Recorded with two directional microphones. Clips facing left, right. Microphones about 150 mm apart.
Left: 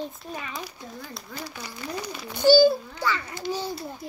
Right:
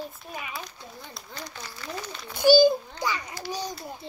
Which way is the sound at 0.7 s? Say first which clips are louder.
Left 4 dB; 5° left (ahead or behind).